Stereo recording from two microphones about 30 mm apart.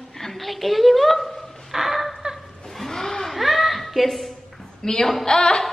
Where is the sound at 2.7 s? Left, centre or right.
Centre.